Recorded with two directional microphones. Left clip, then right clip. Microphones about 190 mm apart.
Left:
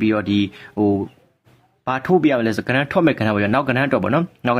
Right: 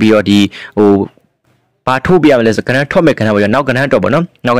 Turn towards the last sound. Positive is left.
turn(degrees=-40)  # may be behind; listen again after turning